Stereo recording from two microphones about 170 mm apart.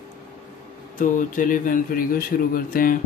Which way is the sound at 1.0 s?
50° left (ahead or behind).